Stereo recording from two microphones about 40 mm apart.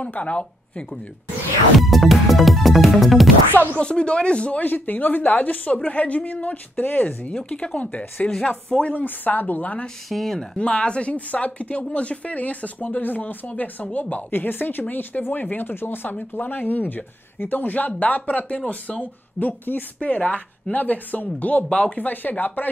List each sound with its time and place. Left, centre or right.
0.0 s speech: left
1.8 s music: centre
3.8 s speech: left
4.6 s speech: left
7.4 s speech: left
8.5 s speech: left
9.0 s speech: left
10.0 s speech: centre
10.6 s speech: left
12.8 s speech: left
14.3 s speech: left
20.0 s speech: left
21.6 s speech: left
21.9 s speech: left